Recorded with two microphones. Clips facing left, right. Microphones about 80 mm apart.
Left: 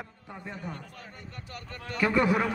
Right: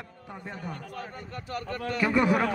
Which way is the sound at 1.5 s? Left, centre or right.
Right.